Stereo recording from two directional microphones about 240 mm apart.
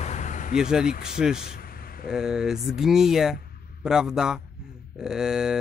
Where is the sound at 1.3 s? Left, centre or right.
Left.